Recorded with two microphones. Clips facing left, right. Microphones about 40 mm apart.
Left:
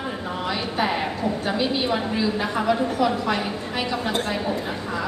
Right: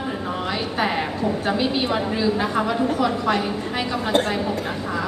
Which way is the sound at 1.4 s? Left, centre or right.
Centre.